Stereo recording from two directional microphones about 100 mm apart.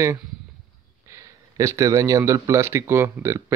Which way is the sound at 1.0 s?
30° right (ahead or behind).